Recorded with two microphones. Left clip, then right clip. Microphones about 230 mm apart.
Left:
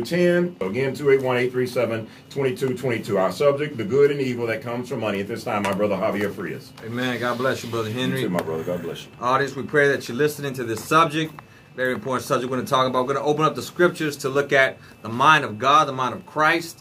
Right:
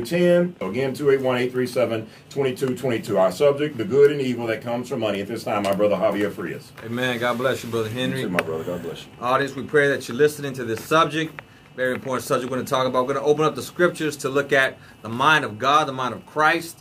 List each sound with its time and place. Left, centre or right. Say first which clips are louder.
0.0 s speech: right 2 dB; centre
7.0 s speech: right 1 dB; right
7.7 s speech: even; centre